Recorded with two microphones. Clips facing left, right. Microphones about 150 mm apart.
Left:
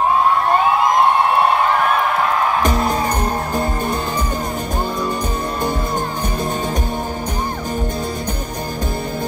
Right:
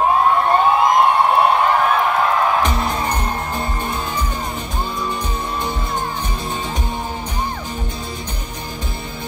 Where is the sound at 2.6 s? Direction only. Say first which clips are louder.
Left 3 dB; 45° left (ahead or behind).